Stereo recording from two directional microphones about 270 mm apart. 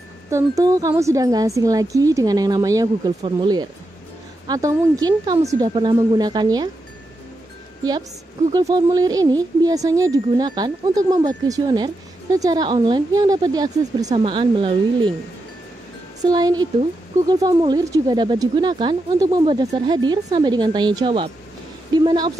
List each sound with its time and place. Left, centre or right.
0.3 s speech: centre
8.5 s speech: centre
16.3 s a woman's voice: centre